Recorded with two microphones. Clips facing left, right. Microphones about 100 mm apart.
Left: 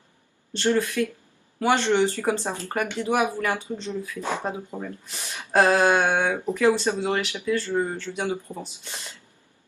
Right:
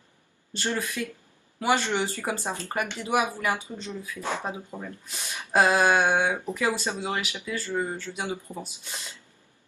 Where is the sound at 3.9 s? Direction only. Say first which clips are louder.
Left 2 dB; 15° left (ahead or behind).